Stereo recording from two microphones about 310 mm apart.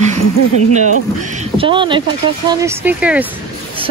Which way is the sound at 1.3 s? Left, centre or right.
Centre.